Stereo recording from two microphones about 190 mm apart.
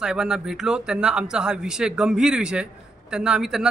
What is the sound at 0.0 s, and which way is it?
Speech, 5° right (ahead or behind).